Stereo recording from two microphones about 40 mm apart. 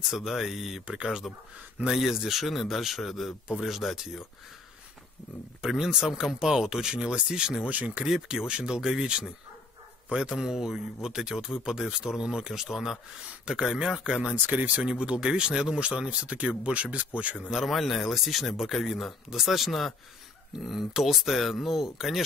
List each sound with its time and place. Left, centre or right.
0.0 s a man's voice: centre
5.7 s speech: centre
7.6 s speech: right
8.1 s speech: centre
8.5 s speech: right
10.3 s speech: centre
14.3 s speech: right
14.8 s speech: right
17.5 s a man's voice: centre